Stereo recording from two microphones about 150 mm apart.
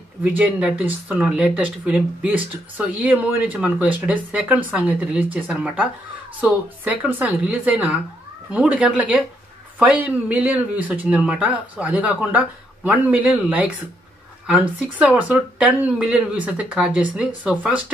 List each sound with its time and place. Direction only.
0.2 s speech: 5° right (ahead or behind)